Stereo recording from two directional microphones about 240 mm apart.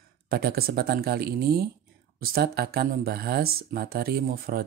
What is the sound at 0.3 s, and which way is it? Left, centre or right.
Speech, right.